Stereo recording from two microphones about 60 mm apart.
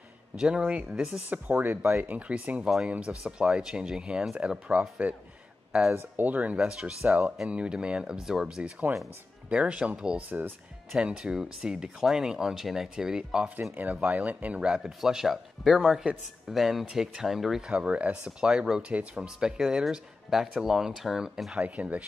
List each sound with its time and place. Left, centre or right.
0.4 s speech: centre
0.8 s speech: centre
1.3 s speech: right
6.1 s speech: right
6.6 s speech: centre
13.7 s speech: right
14.7 s speech: centre
16.8 s speech: centre
17.6 s speech: centre
21.5 s speech: right